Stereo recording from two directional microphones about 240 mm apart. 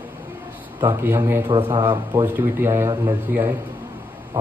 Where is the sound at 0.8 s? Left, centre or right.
Centre.